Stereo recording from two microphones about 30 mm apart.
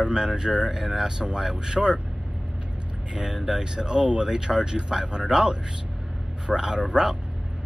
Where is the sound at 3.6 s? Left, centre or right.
Right.